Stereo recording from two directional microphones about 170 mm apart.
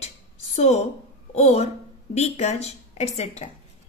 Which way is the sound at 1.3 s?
35° left (ahead or behind).